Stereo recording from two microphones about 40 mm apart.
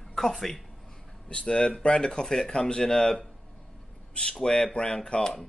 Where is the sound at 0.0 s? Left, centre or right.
Centre.